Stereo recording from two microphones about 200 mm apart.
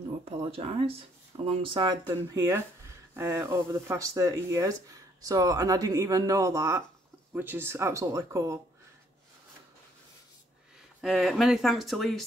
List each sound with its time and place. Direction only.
0.2 s speech: 30° right (ahead or behind)
11.0 s speech: centre (ahead or behind)